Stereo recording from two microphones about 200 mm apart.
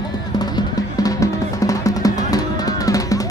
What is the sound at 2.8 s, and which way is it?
Drum, 15° left (ahead or behind).